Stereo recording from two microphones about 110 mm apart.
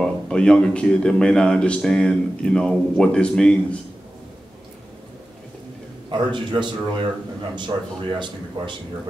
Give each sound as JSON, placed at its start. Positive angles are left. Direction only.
{"t": 0.0, "sound": "speech", "side_deg": 5}
{"t": 6.0, "sound": "speech", "side_deg": -45}